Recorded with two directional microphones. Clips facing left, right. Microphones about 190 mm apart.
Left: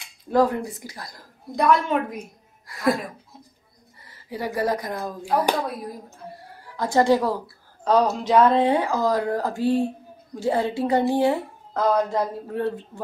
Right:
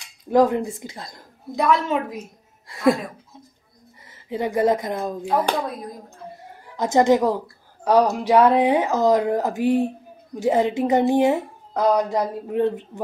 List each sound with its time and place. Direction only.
0.3 s speech: 20° right (ahead or behind)
1.5 s speech: 5° right (ahead or behind)
2.7 s speech: 25° right (ahead or behind)
4.3 s speech: 20° right (ahead or behind)
5.4 s speech: 5° left (ahead or behind)
6.8 s speech: 20° right (ahead or behind)